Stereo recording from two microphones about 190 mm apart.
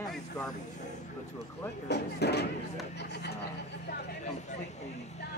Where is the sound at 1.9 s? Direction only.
60° left (ahead or behind).